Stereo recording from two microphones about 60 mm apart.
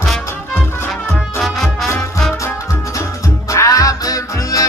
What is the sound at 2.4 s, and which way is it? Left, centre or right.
Music, left.